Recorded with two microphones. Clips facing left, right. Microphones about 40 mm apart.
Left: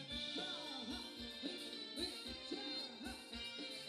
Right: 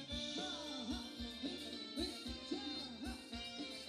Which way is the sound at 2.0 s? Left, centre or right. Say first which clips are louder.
Right 3 dB; centre.